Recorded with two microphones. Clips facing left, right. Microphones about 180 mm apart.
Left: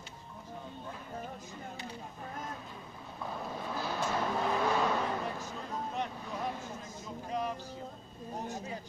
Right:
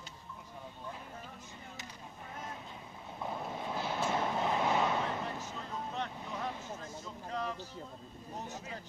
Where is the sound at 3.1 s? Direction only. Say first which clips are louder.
Even; 20° right (ahead or behind).